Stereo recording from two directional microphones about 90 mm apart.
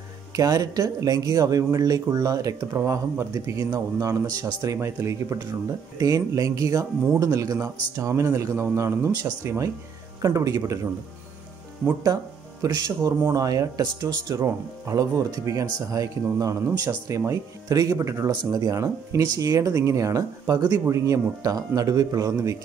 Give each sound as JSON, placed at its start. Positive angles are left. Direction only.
{"t": 0.3, "sound": "speech", "side_deg": -40}
{"t": 12.6, "sound": "speech", "side_deg": -45}